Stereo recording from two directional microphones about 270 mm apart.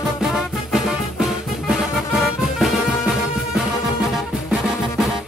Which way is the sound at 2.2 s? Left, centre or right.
Centre.